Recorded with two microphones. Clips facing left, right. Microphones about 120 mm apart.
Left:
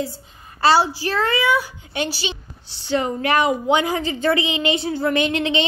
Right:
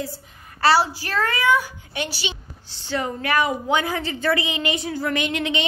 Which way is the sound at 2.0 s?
30° left (ahead or behind).